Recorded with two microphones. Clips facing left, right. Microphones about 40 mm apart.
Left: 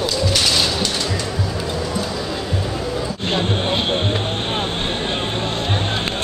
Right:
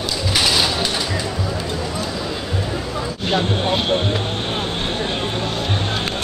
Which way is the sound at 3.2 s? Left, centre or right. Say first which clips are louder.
Right 2 dB; centre.